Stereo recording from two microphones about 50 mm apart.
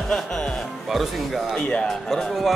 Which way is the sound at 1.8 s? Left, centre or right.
Centre.